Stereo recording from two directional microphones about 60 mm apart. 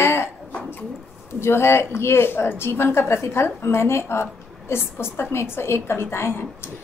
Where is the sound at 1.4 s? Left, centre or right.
Left.